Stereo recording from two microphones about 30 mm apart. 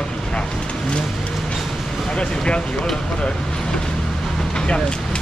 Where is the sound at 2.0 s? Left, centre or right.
Left.